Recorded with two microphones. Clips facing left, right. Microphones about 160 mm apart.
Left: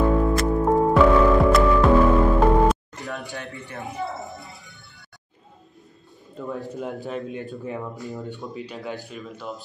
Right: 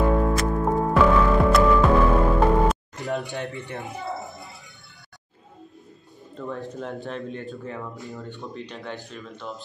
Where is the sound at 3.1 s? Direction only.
20° right (ahead or behind).